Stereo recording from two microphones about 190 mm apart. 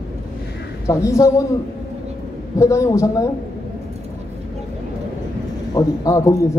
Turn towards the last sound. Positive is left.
turn(degrees=15)  # may be behind; listen again after turning